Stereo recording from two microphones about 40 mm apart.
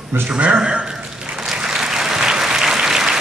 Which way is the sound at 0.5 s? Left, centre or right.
Centre.